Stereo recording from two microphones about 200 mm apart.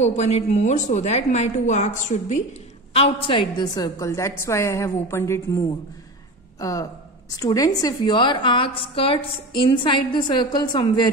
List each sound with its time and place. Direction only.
0.0 s a woman's voice: 35° left (ahead or behind)